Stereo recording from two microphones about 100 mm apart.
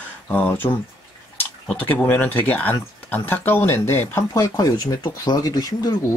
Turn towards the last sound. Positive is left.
turn(degrees=40)  # may be behind; listen again after turning